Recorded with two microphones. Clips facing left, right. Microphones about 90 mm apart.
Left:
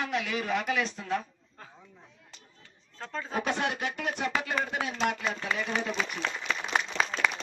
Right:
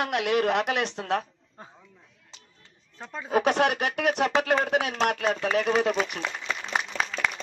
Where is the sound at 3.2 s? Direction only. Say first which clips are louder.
Right 8 dB; 65° right (ahead or behind).